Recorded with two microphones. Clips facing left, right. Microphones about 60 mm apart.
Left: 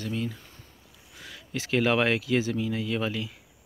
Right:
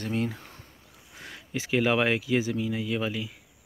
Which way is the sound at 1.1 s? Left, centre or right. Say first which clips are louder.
Right 1 dB; right.